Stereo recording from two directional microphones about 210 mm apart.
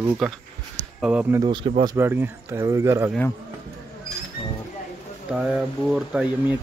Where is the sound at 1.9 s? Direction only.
10° right (ahead or behind).